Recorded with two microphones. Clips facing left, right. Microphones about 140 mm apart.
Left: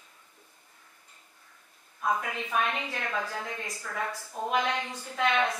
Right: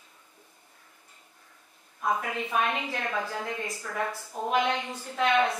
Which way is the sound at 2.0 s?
5° right (ahead or behind).